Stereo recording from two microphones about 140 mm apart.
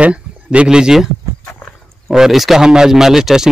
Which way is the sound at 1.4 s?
5° left (ahead or behind).